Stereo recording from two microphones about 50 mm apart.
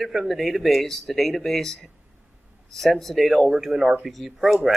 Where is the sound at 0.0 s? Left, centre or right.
Centre.